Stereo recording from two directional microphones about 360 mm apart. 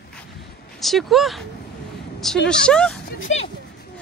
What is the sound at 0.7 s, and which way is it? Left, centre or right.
Speech, centre.